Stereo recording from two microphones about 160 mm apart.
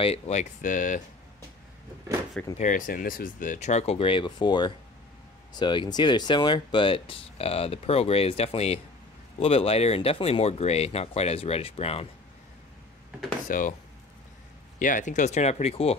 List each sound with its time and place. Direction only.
0.0 s speech: 40° left (ahead or behind)
2.5 s speech: 50° left (ahead or behind)
13.5 s speech: 55° left (ahead or behind)
14.8 s speech: 55° left (ahead or behind)